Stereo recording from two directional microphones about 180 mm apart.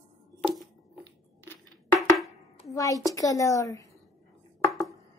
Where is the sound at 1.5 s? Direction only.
15° left (ahead or behind).